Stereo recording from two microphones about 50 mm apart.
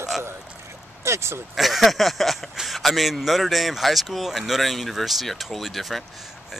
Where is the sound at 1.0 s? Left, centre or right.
Right.